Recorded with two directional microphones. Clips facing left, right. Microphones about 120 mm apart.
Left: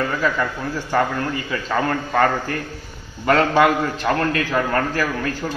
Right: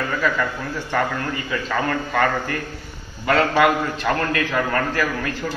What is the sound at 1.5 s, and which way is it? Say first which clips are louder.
Speech: left 1 dB; 30° left (ahead or behind).